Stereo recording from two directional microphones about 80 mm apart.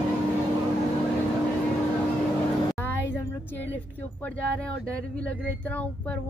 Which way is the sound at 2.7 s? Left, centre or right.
Left.